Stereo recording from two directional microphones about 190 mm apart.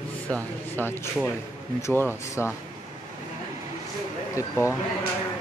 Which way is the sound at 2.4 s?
10° left (ahead or behind).